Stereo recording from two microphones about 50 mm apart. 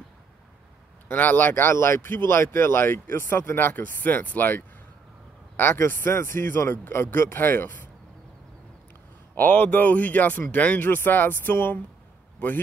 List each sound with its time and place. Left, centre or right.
1.0 s speech: left
9.3 s speech: left